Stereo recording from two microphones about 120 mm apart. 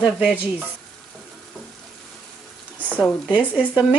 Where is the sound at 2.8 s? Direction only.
10° left (ahead or behind).